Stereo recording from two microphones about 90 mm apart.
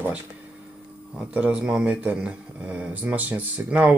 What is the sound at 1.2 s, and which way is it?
A man's voice, 15° right (ahead or behind).